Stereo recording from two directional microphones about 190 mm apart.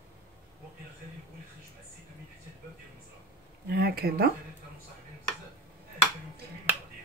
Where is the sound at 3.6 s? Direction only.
55° right (ahead or behind).